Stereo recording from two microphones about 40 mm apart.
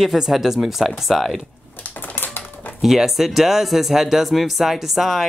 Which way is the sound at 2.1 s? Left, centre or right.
Left.